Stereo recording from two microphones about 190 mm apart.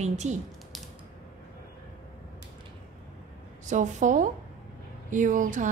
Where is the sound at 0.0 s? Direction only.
40° right (ahead or behind).